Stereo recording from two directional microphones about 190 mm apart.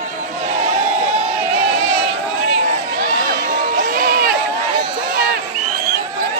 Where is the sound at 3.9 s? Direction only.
50° right (ahead or behind).